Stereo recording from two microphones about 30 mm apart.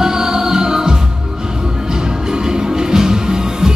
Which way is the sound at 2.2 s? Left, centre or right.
Right.